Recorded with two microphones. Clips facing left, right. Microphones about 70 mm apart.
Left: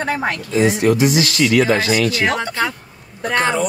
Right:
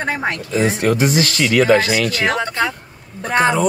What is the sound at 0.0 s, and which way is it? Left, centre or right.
Speech, right.